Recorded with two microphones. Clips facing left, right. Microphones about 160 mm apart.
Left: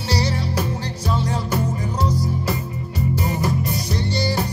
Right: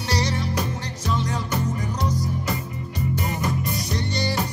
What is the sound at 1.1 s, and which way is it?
Music, 30° left (ahead or behind).